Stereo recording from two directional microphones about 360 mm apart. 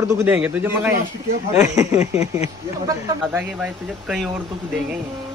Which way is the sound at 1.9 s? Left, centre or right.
Centre.